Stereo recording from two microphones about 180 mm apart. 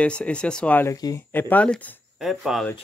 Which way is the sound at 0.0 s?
5° left (ahead or behind).